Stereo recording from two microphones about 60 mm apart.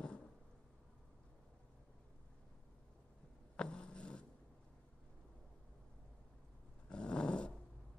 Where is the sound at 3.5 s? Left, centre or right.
Centre.